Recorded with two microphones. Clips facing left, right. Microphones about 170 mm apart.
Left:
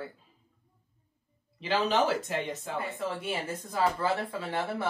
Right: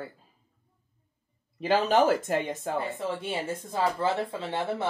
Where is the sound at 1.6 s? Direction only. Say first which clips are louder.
Right 4 dB; 45° right (ahead or behind).